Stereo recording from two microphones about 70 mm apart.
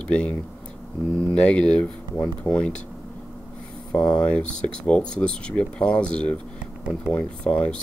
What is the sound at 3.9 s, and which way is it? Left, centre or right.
Speech, centre.